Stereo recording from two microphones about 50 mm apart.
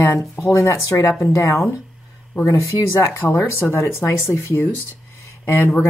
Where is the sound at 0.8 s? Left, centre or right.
Left.